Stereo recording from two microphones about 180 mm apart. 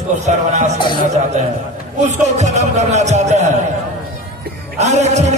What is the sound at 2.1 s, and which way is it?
Speech, 40° right (ahead or behind).